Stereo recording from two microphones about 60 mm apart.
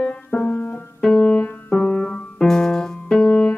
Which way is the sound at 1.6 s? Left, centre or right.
Centre.